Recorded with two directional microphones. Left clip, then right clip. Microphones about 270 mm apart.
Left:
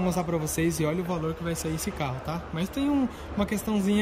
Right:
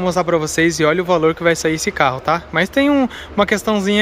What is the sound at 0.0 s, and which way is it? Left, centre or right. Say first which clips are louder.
Speech: right 12 dB; centre.